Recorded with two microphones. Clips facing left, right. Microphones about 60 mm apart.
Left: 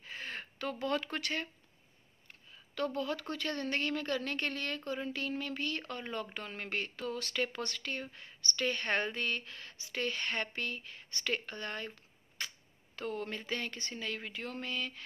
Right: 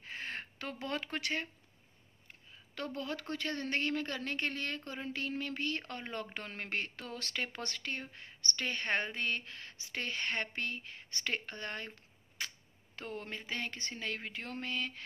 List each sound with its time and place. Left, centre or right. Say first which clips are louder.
0.0 s a sound: right 1 dB; right
2.7 s a woman's voice: left 4 dB; right
12.9 s a woman's voice: left 4 dB; right